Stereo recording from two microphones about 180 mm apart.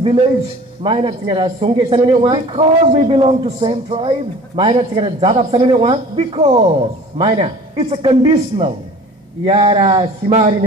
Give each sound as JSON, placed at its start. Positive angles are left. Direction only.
{"t": 0.0, "sound": "a man's voice", "side_deg": -30}